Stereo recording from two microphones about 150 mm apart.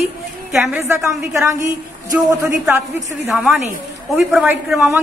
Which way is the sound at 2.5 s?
5° right (ahead or behind).